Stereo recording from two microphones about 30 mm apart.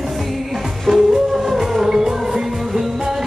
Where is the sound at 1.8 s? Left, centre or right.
Centre.